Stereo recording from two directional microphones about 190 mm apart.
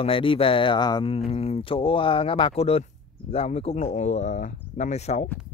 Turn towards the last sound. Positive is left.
turn(degrees=35)  # may be behind; listen again after turning